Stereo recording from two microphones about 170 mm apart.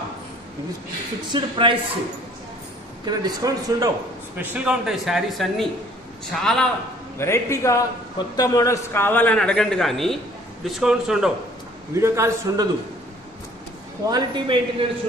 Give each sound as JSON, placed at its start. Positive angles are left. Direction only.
{"t": 1.3, "sound": "speech", "side_deg": -30}
{"t": 3.1, "sound": "a woman's voice", "side_deg": -20}
{"t": 4.4, "sound": "a man's voice", "side_deg": -10}
{"t": 7.2, "sound": "a man's voice", "side_deg": 15}
{"t": 11.9, "sound": "a man's voice", "side_deg": -15}
{"t": 14.0, "sound": "a woman's voice", "side_deg": -25}